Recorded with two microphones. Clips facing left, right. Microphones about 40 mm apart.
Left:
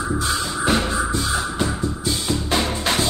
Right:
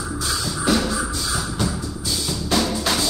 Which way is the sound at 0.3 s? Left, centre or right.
Left.